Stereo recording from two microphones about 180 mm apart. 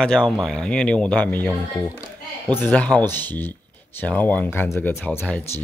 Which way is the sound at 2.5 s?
10° left (ahead or behind).